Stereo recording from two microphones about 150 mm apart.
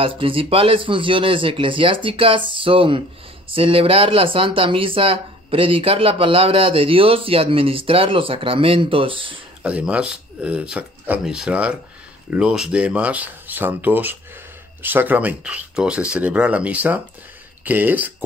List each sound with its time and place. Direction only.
0.0 s speech: 35° right (ahead or behind)
9.6 s speech: 10° right (ahead or behind)